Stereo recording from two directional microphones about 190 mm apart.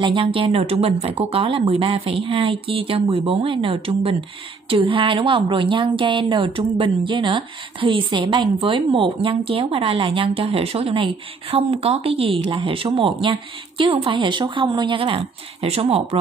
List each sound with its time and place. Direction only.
0.0 s speech: 30° right (ahead or behind)